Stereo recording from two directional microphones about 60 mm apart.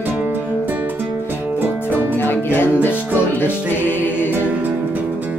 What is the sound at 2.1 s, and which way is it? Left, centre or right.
Music, left.